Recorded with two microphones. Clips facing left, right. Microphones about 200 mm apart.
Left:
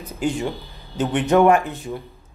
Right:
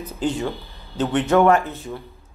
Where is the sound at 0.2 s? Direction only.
15° left (ahead or behind).